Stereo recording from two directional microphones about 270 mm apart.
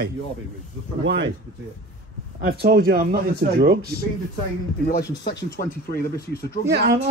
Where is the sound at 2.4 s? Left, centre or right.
Right.